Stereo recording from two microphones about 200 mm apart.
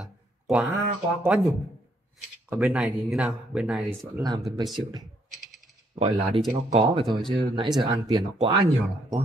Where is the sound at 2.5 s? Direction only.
10° right (ahead or behind).